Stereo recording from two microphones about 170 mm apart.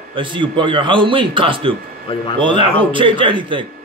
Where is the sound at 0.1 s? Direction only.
30° right (ahead or behind).